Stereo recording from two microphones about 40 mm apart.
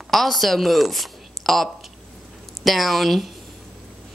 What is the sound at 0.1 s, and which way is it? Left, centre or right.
A woman's voice, centre.